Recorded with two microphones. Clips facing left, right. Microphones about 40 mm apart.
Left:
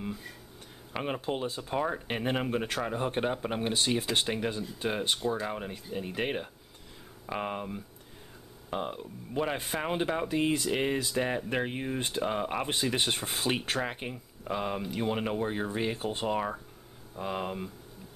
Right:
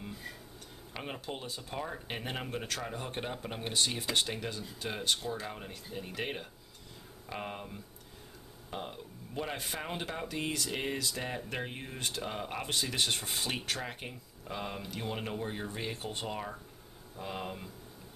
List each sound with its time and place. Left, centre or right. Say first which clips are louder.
0.9 s speech: left 8 dB; centre